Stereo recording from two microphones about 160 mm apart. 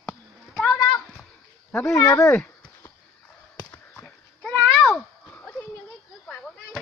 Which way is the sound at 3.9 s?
5° left (ahead or behind).